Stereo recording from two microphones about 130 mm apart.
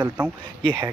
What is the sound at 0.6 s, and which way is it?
Speech, 40° right (ahead or behind).